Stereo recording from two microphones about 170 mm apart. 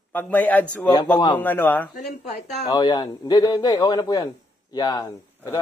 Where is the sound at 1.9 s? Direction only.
45° left (ahead or behind).